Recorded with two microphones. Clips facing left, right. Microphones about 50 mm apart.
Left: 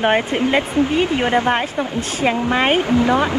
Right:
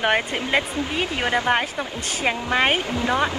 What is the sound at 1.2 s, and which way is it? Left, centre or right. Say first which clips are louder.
Speech: left 1 dB; left.